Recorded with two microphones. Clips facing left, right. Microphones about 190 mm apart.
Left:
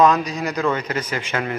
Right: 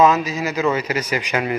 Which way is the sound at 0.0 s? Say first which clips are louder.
Right 1 dB; 5° right (ahead or behind).